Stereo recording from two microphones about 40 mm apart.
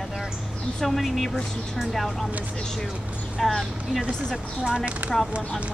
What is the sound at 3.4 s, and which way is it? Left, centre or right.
Speech, centre.